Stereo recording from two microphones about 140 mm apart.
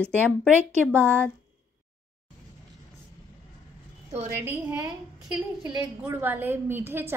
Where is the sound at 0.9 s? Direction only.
15° right (ahead or behind).